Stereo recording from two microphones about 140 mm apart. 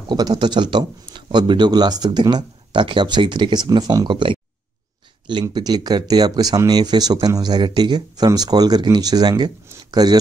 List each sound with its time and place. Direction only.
0.1 s speech: 30° right (ahead or behind)